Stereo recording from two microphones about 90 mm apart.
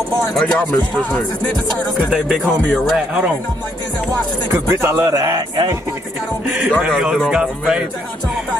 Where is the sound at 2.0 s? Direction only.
10° right (ahead or behind).